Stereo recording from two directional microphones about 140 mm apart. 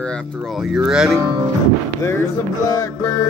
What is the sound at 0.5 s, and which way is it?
Speech, 5° right (ahead or behind).